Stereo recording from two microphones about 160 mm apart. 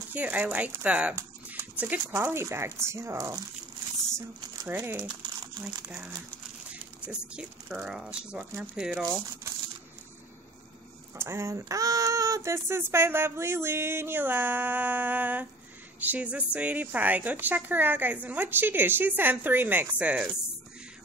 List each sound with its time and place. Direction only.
0.1 s speech: 10° right (ahead or behind)
4.6 s speech: 15° right (ahead or behind)
6.7 s speech: 5° right (ahead or behind)
11.1 s speech: 15° right (ahead or behind)